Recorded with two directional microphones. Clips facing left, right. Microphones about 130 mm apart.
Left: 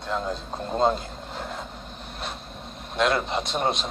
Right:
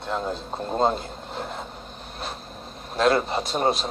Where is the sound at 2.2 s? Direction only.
Centre (ahead or behind).